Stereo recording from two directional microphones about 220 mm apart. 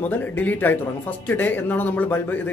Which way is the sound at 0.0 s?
5° left (ahead or behind).